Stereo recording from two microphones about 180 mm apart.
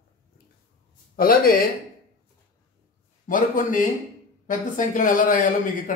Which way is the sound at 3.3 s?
45° left (ahead or behind).